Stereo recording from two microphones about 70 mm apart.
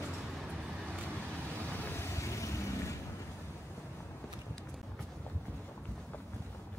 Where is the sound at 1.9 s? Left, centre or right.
Left.